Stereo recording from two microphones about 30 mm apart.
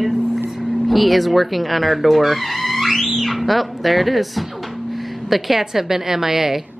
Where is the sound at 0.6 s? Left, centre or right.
Centre.